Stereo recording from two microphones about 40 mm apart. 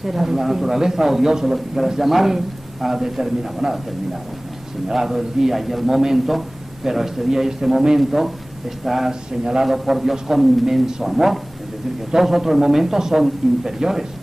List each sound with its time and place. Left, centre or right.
0.0 s a man's voice: centre
4.8 s a man's voice: centre
9.4 s a man's voice: centre
9.7 s a man's voice: centre